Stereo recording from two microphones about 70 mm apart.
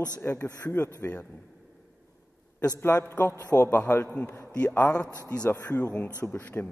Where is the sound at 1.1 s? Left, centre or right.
Left.